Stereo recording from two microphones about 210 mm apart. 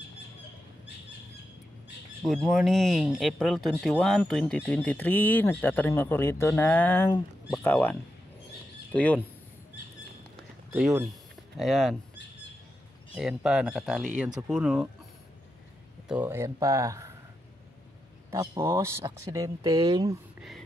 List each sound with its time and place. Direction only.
2.2 s speech: centre (ahead or behind)
10.7 s speech: centre (ahead or behind)
11.1 s a sound: centre (ahead or behind)
13.1 s speech: 5° right (ahead or behind)
16.1 s speech: 10° right (ahead or behind)
18.3 s speech: 15° right (ahead or behind)
20.3 s a sound: centre (ahead or behind)